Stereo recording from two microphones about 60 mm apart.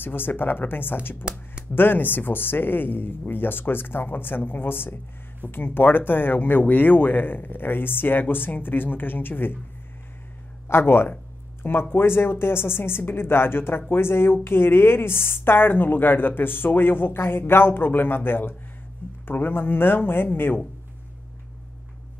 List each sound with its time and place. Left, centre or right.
0.0 s speech: left
1.2 s speech: centre
1.7 s speech: left
10.7 s speech: left